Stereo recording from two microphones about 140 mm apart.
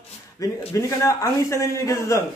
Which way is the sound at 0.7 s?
20° left (ahead or behind).